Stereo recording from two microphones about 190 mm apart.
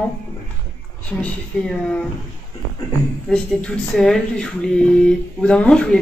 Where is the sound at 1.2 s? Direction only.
5° left (ahead or behind).